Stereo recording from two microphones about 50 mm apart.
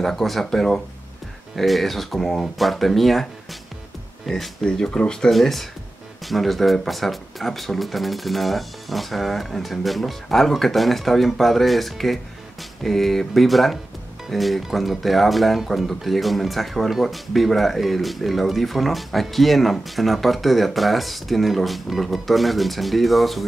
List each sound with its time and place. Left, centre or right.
0.0 s speech: centre
4.3 s speech: centre
4.6 s speech: centre
5.3 s speech: centre